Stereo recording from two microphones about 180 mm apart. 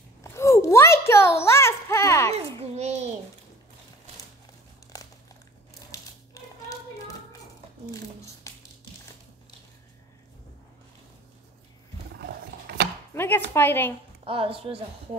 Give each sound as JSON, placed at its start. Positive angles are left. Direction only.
{"t": 0.2, "sound": "a sound", "side_deg": 15}
{"t": 2.3, "sound": "a child's voice", "side_deg": -35}
{"t": 4.9, "sound": "crumpling", "side_deg": 20}
{"t": 6.4, "sound": "hands", "side_deg": 20}
{"t": 8.5, "sound": "music", "side_deg": 15}
{"t": 12.2, "sound": "roaring cats", "side_deg": -70}
{"t": 13.1, "sound": "a sound", "side_deg": 10}
{"t": 13.5, "sound": "a woman's voice", "side_deg": 10}
{"t": 14.2, "sound": "a woman's voice", "side_deg": -30}